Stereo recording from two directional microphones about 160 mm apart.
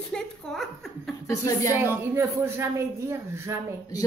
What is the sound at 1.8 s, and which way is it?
Speech, 20° right (ahead or behind).